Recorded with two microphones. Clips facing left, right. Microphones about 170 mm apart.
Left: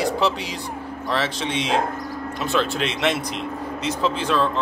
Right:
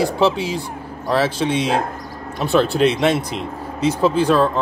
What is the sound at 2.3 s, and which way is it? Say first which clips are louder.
Speech: right 6 dB; 35° right (ahead or behind).